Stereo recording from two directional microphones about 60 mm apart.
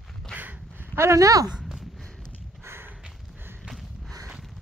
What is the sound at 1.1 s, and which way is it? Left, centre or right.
Speech, right.